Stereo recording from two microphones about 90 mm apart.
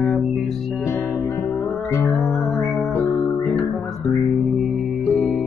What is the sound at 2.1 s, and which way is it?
Music, 5° left (ahead or behind).